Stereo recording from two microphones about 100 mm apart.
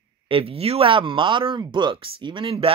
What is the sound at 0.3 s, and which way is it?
Speech, 65° right (ahead or behind).